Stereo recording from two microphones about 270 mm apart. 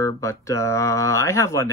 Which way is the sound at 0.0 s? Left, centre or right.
Centre.